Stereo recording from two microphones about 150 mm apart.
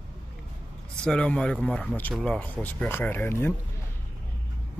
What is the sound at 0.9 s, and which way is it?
Speech, 5° left (ahead or behind).